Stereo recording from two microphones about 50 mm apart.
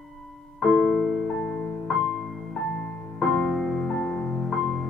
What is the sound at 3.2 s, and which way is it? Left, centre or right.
Music, centre.